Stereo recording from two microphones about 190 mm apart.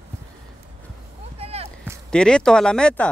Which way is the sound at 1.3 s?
30° right (ahead or behind).